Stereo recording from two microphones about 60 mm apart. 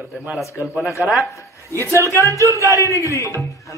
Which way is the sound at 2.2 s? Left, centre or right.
Right.